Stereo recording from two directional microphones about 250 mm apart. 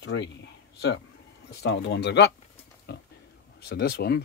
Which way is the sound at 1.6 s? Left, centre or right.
Left.